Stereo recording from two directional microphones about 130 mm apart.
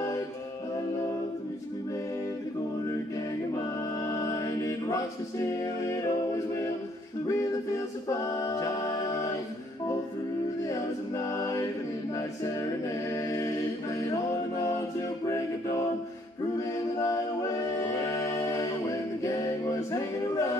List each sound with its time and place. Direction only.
3.5 s a capella: 25° left (ahead or behind)
5.9 s music: 25° left (ahead or behind)
8.1 s a capella: 25° left (ahead or behind)
10.7 s a capella: 25° left (ahead or behind)
13.1 s music: 25° left (ahead or behind)
15.2 s music: 25° left (ahead or behind)
16.5 s a capella: 25° left (ahead or behind)